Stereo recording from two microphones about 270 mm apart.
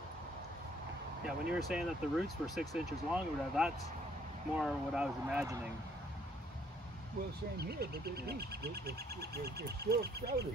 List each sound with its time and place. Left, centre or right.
1.5 s speech: centre
7.5 s speech: right